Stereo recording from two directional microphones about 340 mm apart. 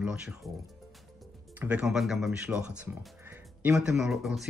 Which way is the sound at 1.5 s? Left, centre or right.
Centre.